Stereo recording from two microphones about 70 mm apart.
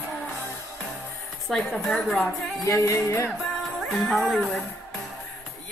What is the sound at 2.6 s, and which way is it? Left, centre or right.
Music, left.